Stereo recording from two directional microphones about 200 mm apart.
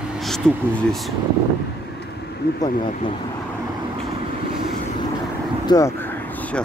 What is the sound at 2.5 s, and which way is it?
Speech, 40° left (ahead or behind).